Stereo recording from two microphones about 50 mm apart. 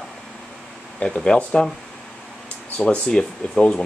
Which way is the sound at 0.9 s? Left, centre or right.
Centre.